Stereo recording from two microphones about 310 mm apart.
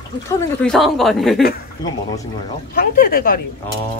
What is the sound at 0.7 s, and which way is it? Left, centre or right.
Speech, centre.